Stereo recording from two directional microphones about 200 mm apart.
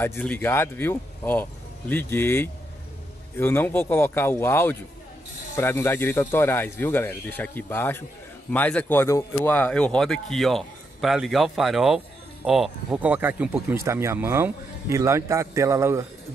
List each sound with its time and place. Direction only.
0.0 s speech: 10° left (ahead or behind); by 16.1 s 15° right (ahead or behind)